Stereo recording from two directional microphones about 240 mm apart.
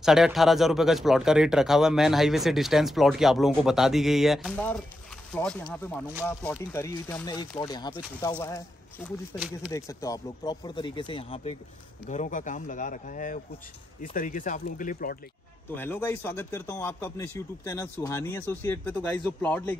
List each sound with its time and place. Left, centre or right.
0.0 s speech: centre; by 15.1 s left
15.7 s speech: centre